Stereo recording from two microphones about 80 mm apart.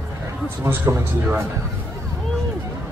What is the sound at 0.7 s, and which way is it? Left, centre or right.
Speech, right.